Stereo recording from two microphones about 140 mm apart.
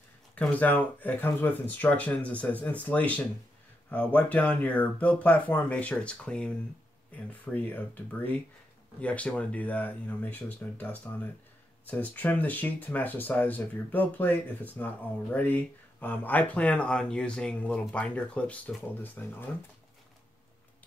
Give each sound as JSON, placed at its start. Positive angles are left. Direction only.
{"t": 0.4, "sound": "speech", "side_deg": 10}